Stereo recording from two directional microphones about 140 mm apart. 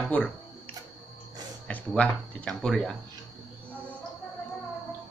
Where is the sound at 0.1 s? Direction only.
10° left (ahead or behind).